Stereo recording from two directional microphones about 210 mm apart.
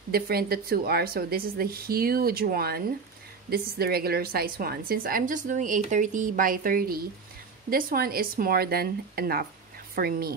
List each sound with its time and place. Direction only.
0.1 s a woman's voice: 45° right (ahead or behind)